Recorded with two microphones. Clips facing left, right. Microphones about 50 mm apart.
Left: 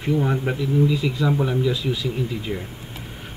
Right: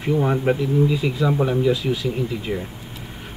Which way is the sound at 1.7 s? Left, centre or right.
Right.